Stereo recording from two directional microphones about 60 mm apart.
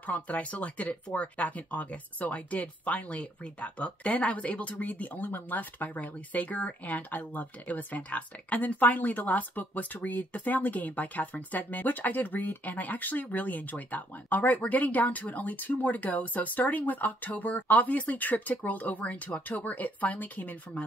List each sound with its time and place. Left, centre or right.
0.0 s speech: left